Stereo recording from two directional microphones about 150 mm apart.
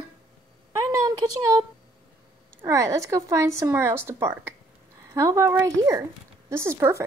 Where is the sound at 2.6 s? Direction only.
20° right (ahead or behind).